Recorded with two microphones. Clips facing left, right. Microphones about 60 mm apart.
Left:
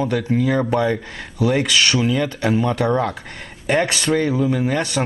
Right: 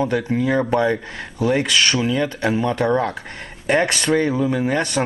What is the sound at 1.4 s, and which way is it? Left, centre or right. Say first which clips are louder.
Speech: even; right.